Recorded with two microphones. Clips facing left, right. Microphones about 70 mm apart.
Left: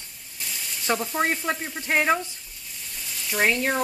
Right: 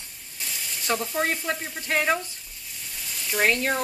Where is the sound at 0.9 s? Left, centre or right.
Centre.